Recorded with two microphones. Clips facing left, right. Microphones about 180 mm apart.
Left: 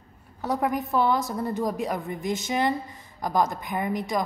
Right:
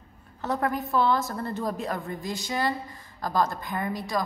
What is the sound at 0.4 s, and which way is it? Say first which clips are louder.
A woman's voice: left 2 dB; 15° left (ahead or behind).